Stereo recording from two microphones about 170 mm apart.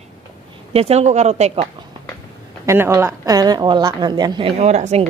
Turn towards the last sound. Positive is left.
turn(degrees=-40)  # may be behind; listen again after turning